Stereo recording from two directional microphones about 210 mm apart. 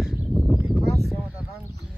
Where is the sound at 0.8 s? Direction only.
50° right (ahead or behind).